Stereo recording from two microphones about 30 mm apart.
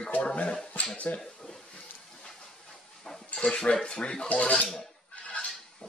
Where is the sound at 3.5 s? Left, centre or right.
Left.